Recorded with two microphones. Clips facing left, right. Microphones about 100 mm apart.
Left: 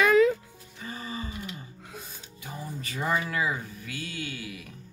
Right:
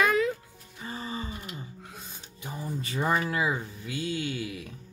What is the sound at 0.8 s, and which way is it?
Music, 30° right (ahead or behind).